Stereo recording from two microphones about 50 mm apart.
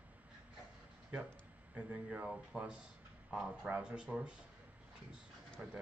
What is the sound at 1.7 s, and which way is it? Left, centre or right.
Speech, right.